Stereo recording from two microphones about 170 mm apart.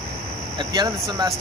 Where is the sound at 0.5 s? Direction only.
25° right (ahead or behind).